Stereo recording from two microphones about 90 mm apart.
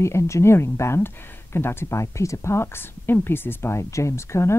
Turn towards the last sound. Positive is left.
turn(degrees=30)  # may be behind; listen again after turning